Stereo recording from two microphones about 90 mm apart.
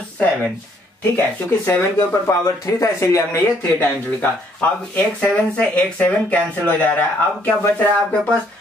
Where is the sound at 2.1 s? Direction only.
30° left (ahead or behind).